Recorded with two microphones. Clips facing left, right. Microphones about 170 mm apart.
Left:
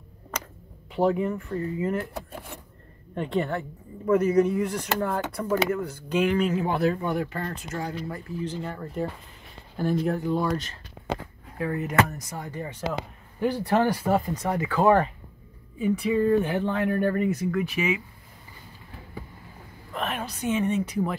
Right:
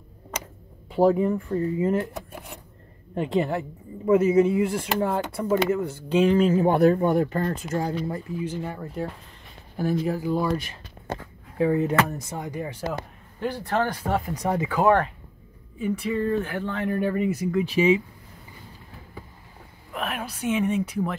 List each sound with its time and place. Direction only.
0.9 s speech: 35° right (ahead or behind)
3.2 s speech: 20° right (ahead or behind)
4.2 s speech: 5° right (ahead or behind)
4.7 s speech: 25° right (ahead or behind)
5.6 s speech: 5° right (ahead or behind)
5.9 s speech: 30° right (ahead or behind)
8.4 s speech: 10° right (ahead or behind)
11.5 s speech: 25° right (ahead or behind)
13.4 s speech: 15° left (ahead or behind)
14.3 s speech: 15° right (ahead or behind)
14.8 s speech: centre (ahead or behind)
17.0 s speech: 5° right (ahead or behind)
17.6 s speech: 30° right (ahead or behind)
19.9 s speech: 5° right (ahead or behind)